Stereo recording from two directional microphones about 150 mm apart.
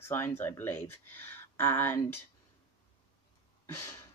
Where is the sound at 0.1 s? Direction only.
15° left (ahead or behind).